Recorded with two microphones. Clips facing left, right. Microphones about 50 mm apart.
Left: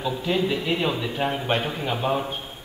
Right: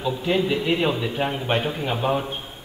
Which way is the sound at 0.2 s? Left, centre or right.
Centre.